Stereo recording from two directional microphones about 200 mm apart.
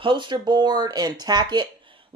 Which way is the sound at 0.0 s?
25° right (ahead or behind).